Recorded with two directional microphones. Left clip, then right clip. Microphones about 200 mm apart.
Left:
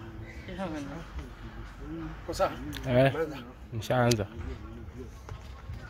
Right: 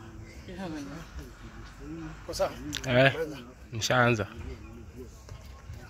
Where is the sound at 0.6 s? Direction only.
25° right (ahead or behind).